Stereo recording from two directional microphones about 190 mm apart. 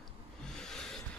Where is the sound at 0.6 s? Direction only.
5° left (ahead or behind).